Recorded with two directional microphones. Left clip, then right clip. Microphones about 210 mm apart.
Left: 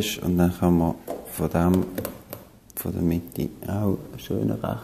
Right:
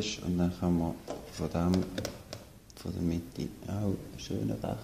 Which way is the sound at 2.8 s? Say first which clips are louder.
Left 9 dB; 25° left (ahead or behind).